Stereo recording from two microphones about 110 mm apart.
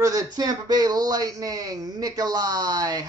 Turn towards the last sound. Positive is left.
turn(degrees=-35)  # may be behind; listen again after turning